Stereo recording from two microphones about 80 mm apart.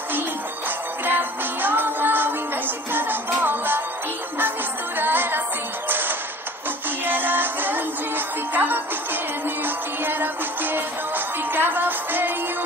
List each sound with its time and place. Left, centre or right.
0.7 s music: right
4.9 s music: right